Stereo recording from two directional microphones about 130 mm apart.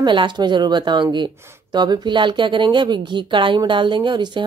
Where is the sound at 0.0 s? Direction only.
40° right (ahead or behind).